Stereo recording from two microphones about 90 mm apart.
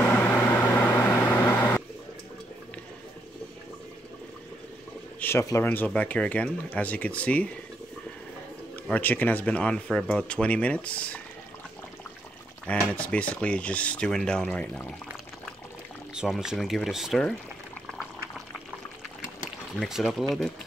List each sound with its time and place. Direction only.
0.0 s microwave oven: 20° left (ahead or behind)
1.0 s vehicle: 30° left (ahead or behind)
5.2 s a sound: 15° left (ahead or behind)
5.6 s speech: 25° left (ahead or behind)
8.8 s speech: 20° left (ahead or behind)
12.6 s speech: 15° left (ahead or behind)
16.2 s speech: 5° right (ahead or behind)
19.7 s speech: centre (ahead or behind)